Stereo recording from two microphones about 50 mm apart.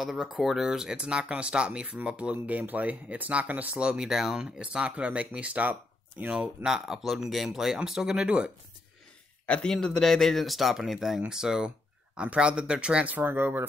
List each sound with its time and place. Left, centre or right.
0.0 s speech: centre
0.9 s speech: right
2.3 s speech: right; by 4.1 s centre
4.1 s speech: centre
4.4 s speech: centre
6.6 s speech: centre
9.7 s speech: centre; by 13.1 s right
13.1 s speech: right
13.4 s speech: right